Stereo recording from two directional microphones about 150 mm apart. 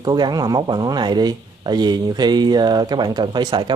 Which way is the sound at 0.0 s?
25° right (ahead or behind).